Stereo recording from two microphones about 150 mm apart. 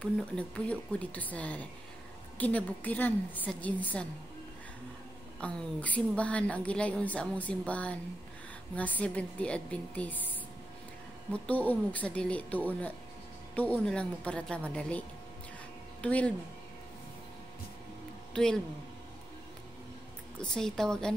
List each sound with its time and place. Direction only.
0.0 s a woman's voice: 10° left (ahead or behind)
5.4 s a woman's voice: 10° left (ahead or behind)
11.3 s a woman's voice: 10° left (ahead or behind)
18.3 s speech: 5° left (ahead or behind)
20.3 s a woman's voice: 5° left (ahead or behind)